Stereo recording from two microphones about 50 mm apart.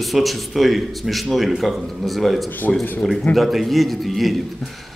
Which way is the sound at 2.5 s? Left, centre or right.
Left.